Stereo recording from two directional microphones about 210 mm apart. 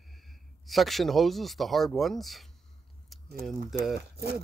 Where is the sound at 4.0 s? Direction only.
50° right (ahead or behind).